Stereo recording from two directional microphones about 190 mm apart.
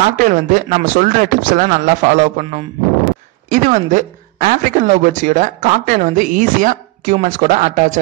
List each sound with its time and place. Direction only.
0.2 s speech: 45° right (ahead or behind)